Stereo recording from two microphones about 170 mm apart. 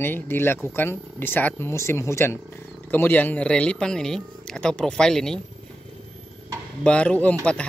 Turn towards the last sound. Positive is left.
turn(degrees=5)  # may be behind; listen again after turning